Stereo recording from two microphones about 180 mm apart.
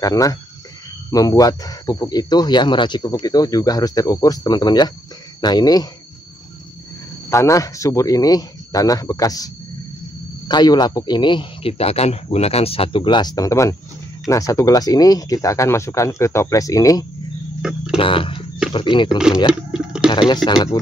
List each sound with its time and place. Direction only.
0.0 s speech: 20° left (ahead or behind)
7.2 s speech: 15° left (ahead or behind)
10.5 s speech: 25° left (ahead or behind)
17.6 s a sound: 5° right (ahead or behind)
17.9 s speech: 30° left (ahead or behind)
19.0 s speech: 5° right (ahead or behind)
19.7 s a sound: 5° right (ahead or behind)
20.1 s speech: 25° left (ahead or behind)